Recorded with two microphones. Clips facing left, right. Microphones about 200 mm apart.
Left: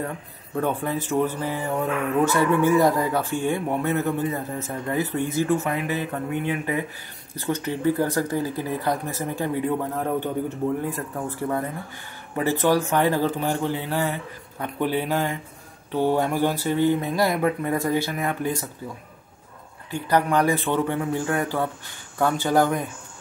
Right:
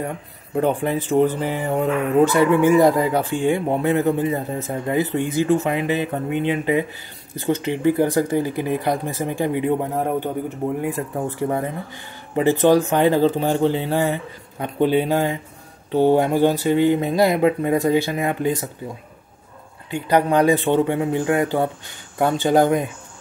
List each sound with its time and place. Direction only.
0.6 s speech: 20° right (ahead or behind)
3.7 s speech: 30° right (ahead or behind)
19.9 s speech: 20° right (ahead or behind)